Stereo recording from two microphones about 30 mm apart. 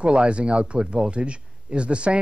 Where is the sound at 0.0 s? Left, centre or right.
Right.